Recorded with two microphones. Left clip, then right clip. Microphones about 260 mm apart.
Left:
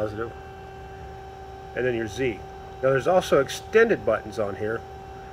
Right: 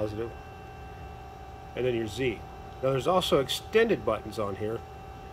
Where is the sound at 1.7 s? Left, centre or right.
Centre.